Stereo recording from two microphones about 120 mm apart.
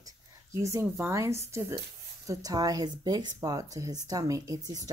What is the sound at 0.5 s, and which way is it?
A woman's voice, 25° right (ahead or behind).